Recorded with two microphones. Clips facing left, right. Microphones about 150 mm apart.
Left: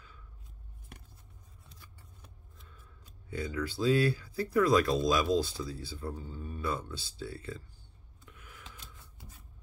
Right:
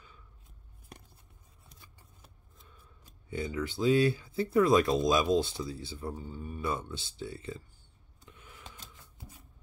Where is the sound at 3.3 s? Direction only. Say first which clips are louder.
Right 1 dB; 20° right (ahead or behind).